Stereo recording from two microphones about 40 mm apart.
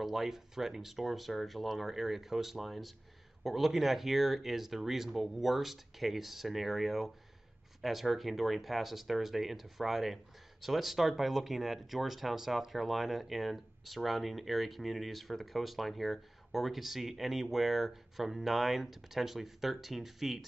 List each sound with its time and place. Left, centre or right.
0.0 s speech: centre